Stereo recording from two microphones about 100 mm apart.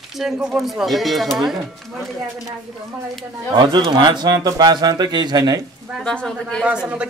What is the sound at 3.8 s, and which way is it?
Speech, 50° right (ahead or behind).